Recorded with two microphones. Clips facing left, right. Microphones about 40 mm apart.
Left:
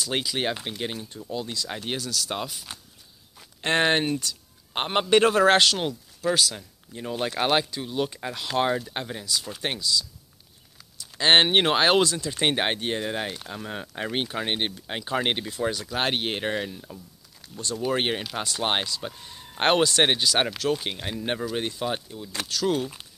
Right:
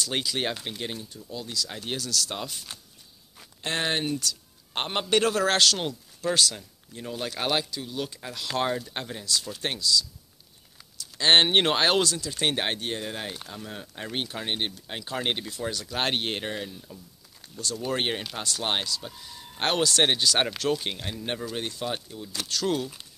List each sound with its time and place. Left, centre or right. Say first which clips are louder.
0.0 s speech: left 2 dB; centre
1.0 s speech: left 4 dB; left
1.3 s speech: left 3 dB; left
3.6 s speech: left 6 dB; left
5.8 s speech: left 2 dB; centre; by 15.9 s left
15.9 s speech: left 2 dB; centre
16.4 s speech: left 5 dB; left
19.9 s speech: left 1 dB; centre
21.0 s speech: left 3 dB; centre